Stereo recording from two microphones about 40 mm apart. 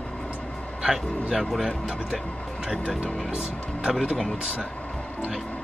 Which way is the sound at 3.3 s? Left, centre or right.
Right.